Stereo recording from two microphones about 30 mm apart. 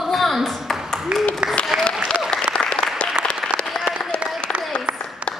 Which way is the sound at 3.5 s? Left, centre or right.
Right.